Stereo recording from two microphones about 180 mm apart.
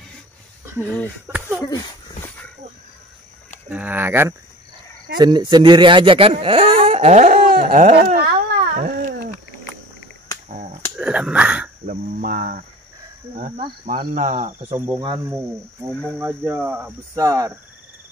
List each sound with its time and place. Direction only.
1.2 s speech: 10° right (ahead or behind)
1.7 s dog: 20° left (ahead or behind)
3.7 s speech: 10° right (ahead or behind)
5.2 s speech: 25° right (ahead or behind); by 8.3 s 50° right (ahead or behind)
8.7 s a sound: 50° right (ahead or behind)
10.5 s finger snapping: 45° right (ahead or behind)
11.0 s a sound: 5° right (ahead or behind)
11.8 s speech: 50° right (ahead or behind)
14.6 s speech: 10° right (ahead or behind)